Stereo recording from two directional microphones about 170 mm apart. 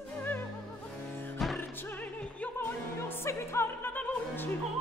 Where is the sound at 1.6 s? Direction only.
10° left (ahead or behind).